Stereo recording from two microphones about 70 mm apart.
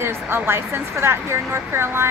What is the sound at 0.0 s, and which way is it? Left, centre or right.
Speech, right.